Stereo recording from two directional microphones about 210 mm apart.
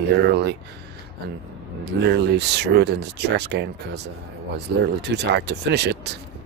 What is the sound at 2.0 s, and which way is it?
Speech, 55° right (ahead or behind).